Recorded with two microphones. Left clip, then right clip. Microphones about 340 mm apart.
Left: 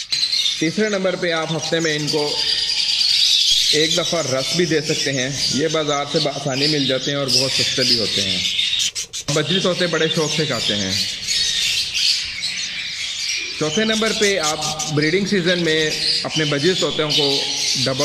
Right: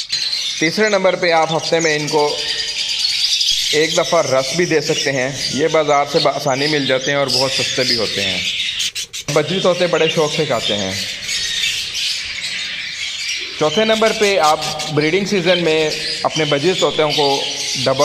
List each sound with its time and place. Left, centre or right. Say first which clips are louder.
0.6 s a man's voice: right 5 dB; right
3.7 s a man's voice: right 4 dB; right
9.3 s a man's voice: right 4 dB; right
13.6 s a man's voice: right 7 dB; right